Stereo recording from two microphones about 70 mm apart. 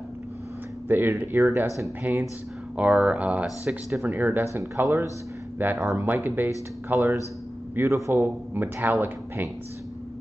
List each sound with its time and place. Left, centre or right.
0.8 s a man's voice: right
2.1 s a man's voice: right
7.7 s a man's voice: right